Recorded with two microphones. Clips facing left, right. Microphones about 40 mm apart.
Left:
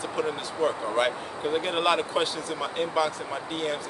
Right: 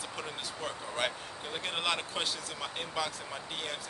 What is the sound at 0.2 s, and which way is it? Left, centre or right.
Speech, centre.